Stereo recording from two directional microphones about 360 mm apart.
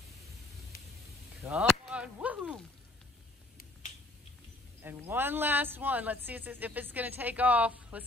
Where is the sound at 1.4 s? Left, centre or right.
Centre.